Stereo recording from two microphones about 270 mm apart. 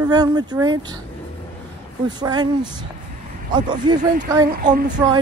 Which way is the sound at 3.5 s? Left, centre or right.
Centre.